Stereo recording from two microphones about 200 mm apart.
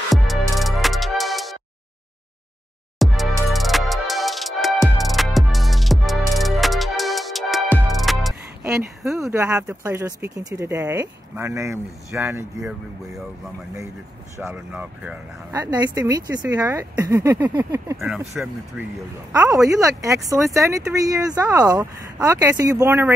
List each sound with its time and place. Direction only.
0.1 s music: centre (ahead or behind)
3.0 s music: centre (ahead or behind)
9.3 s speech: 15° right (ahead or behind)
14.3 s speech: 10° right (ahead or behind)
17.9 s speech: 5° right (ahead or behind)
19.3 s speech: 15° right (ahead or behind)